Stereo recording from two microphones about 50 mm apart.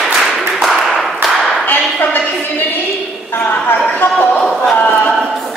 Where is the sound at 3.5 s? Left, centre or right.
Left.